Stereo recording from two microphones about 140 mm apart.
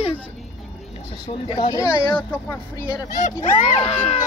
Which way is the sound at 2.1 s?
15° left (ahead or behind).